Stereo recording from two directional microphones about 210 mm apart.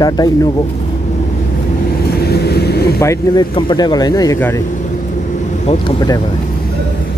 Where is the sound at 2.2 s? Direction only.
50° left (ahead or behind).